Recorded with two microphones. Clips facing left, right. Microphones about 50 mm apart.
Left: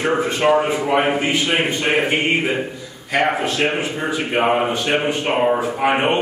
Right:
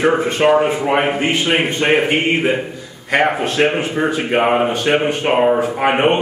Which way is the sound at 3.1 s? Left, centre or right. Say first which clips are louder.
Right 3 dB; right.